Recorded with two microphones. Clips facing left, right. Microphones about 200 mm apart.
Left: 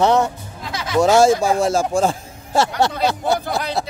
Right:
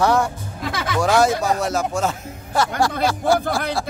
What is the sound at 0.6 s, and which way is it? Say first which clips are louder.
Speech: right 3 dB; 55° right (ahead or behind).